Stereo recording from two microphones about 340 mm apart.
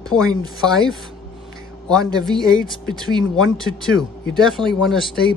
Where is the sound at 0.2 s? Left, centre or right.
Centre.